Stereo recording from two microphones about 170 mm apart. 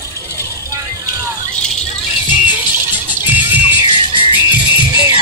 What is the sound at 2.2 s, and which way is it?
Music, 25° left (ahead or behind).